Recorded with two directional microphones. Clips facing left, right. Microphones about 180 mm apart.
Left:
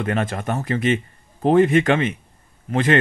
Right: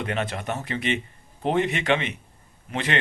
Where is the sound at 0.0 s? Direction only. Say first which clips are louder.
Left 5 dB; 45° left (ahead or behind).